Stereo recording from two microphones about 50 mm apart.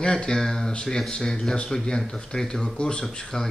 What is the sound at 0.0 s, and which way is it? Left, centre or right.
Speech, centre.